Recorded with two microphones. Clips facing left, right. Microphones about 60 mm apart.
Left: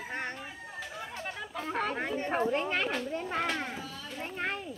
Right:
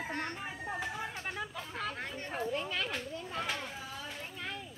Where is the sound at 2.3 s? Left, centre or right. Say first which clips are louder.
Left 6 dB; left.